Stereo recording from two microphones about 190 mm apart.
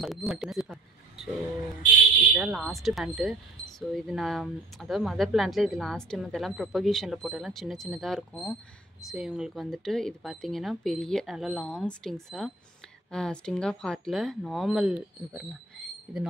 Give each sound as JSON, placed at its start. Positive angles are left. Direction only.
{"t": 0.0, "sound": "speech", "side_deg": 0}
{"t": 2.3, "sound": "speech", "side_deg": 0}